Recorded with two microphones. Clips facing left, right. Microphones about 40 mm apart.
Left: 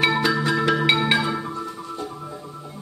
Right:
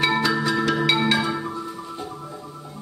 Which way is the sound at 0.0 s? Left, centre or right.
Centre.